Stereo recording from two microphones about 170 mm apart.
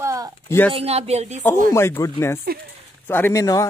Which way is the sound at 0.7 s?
35° right (ahead or behind).